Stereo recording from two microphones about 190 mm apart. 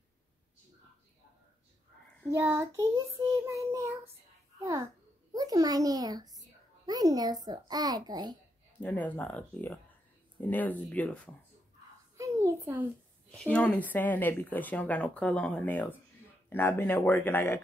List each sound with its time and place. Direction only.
2.3 s child singing: 15° right (ahead or behind)
5.3 s a child's voice: 20° right (ahead or behind)
8.7 s speech: 10° left (ahead or behind)
12.2 s a child's voice: 15° right (ahead or behind)
13.3 s speech: 5° left (ahead or behind)